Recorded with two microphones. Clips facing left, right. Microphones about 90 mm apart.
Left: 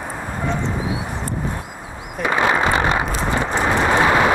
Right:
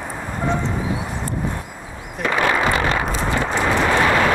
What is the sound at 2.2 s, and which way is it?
Horse, 20° left (ahead or behind).